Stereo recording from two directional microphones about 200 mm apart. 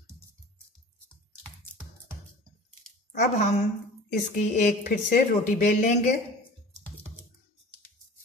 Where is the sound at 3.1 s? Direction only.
35° left (ahead or behind).